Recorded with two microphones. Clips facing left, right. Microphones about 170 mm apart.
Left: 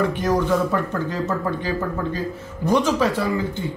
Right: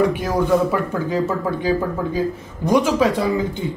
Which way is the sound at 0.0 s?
10° right (ahead or behind).